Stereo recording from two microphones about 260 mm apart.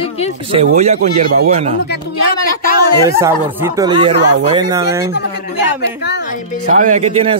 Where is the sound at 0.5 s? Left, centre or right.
Right.